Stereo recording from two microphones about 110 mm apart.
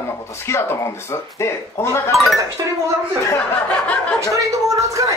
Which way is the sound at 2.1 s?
Centre (ahead or behind).